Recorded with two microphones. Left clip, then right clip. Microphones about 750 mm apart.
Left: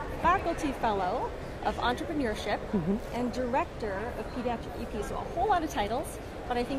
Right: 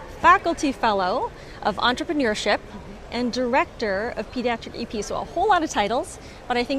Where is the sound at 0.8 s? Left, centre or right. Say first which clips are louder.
Right 8 dB; right.